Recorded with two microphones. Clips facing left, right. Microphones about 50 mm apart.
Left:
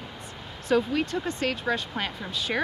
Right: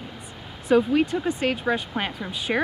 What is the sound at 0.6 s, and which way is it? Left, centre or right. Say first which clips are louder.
A woman's voice: right 5 dB; centre.